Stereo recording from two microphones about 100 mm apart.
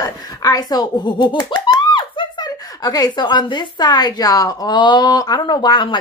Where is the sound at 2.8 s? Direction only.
40° left (ahead or behind).